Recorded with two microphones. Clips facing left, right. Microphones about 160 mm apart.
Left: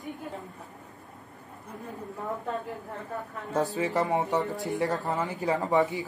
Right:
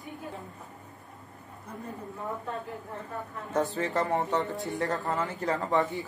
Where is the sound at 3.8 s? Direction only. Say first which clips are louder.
Left 2 dB; 20° left (ahead or behind).